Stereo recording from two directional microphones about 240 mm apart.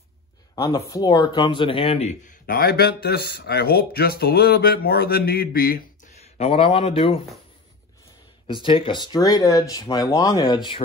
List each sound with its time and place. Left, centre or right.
0.6 s speech: centre
8.6 s speech: left